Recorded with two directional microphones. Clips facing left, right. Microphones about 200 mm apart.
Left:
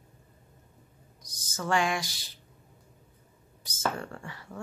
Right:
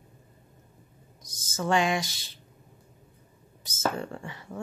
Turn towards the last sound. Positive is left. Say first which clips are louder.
# right 3 dB
turn(degrees=-20)  # may be behind; listen again after turning